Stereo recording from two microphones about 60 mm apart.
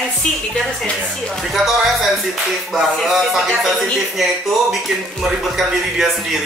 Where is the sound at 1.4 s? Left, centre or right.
Centre.